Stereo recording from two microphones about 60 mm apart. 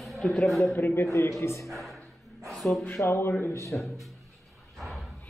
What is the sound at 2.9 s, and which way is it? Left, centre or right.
Speech, left.